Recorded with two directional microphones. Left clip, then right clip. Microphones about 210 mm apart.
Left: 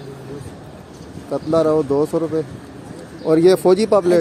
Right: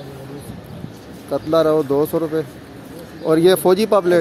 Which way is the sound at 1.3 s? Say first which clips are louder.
Right 1 dB; 5° left (ahead or behind).